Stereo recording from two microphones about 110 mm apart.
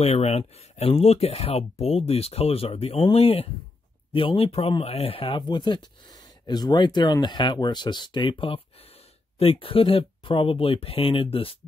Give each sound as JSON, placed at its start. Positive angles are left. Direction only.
{"t": 0.0, "sound": "speech", "side_deg": 70}
{"t": 4.1, "sound": "speech", "side_deg": 50}